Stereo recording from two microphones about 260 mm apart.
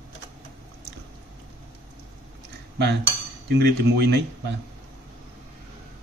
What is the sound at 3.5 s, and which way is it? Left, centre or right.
Speech, right.